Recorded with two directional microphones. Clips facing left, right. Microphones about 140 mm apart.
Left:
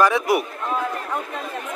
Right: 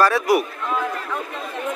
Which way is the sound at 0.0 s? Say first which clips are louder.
Right 1 dB; 20° left (ahead or behind).